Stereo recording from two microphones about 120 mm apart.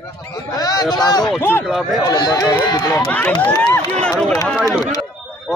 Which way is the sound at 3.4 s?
10° left (ahead or behind).